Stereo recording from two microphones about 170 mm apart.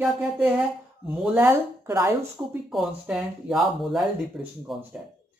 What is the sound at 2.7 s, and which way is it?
Speech, centre (ahead or behind).